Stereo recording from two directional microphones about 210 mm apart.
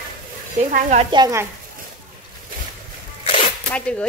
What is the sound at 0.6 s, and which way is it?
Speech, 35° right (ahead or behind).